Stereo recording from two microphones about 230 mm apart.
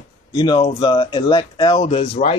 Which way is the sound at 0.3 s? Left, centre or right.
Centre.